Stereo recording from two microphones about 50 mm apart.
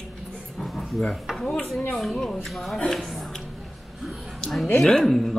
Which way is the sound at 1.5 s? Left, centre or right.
Centre.